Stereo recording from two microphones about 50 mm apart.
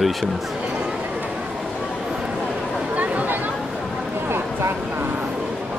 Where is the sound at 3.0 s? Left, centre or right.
Right.